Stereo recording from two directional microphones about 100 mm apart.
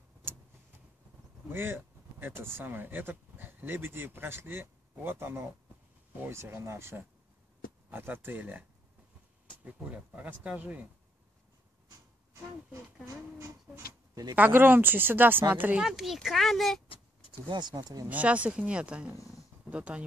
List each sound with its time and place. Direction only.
1.5 s a sound: 20° right (ahead or behind)
2.4 s speech: 20° right (ahead or behind)
9.7 s speech: 15° right (ahead or behind)
14.3 s speech: 20° right (ahead or behind)
15.8 s speech: 5° right (ahead or behind)
17.3 s speech: 50° right (ahead or behind)
18.0 s speech: 15° right (ahead or behind)